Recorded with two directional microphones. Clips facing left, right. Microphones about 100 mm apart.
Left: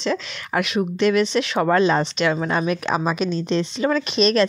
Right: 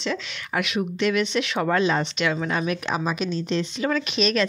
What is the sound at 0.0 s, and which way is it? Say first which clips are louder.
Speech: left 4 dB; 35° left (ahead or behind).